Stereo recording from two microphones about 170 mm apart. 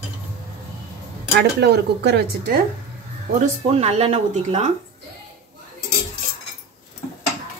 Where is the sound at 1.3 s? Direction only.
85° right.